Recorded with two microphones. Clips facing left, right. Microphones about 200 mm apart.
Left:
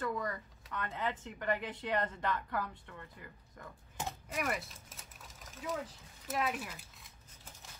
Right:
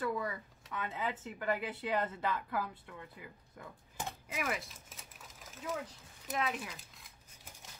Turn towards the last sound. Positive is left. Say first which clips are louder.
# even
turn(degrees=5)  # may be behind; listen again after turning